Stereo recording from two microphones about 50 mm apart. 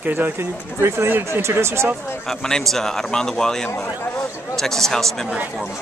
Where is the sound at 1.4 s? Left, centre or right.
Right.